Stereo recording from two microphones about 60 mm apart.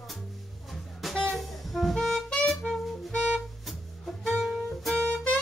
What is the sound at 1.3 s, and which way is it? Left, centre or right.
Saxophone, centre.